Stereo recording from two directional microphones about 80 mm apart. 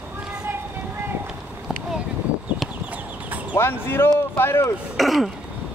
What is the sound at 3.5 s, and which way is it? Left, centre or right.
Speech, left.